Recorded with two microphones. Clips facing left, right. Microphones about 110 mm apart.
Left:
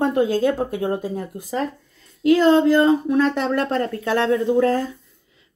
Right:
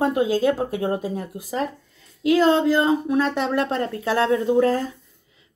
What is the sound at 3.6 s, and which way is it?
Speech, 20° right (ahead or behind).